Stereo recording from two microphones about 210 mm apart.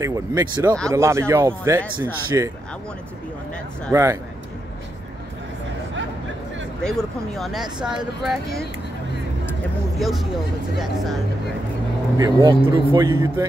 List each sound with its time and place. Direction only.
0.0 s a man's voice: 15° right (ahead or behind)
3.9 s a man's voice: 15° right (ahead or behind)
6.8 s speech: 5° left (ahead or behind)
9.9 s speech: centre (ahead or behind)
12.2 s a man's voice: 20° right (ahead or behind)